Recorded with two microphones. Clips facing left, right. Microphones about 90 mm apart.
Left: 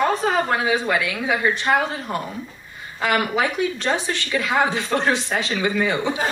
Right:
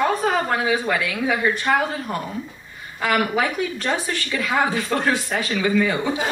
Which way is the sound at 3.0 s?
25° left (ahead or behind).